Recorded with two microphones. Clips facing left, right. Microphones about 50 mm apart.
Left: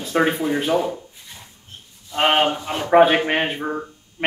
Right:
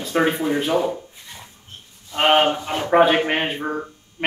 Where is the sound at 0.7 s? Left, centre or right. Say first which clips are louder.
Even; centre.